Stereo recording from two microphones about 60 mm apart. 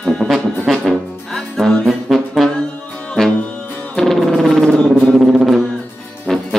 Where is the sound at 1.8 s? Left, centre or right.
Centre.